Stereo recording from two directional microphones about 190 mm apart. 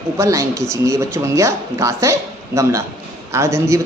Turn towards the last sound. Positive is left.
turn(degrees=-15)  # may be behind; listen again after turning